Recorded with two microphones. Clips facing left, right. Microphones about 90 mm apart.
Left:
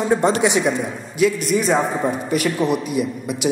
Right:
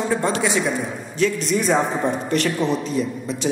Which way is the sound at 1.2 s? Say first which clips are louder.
Left 3 dB; 5° left (ahead or behind).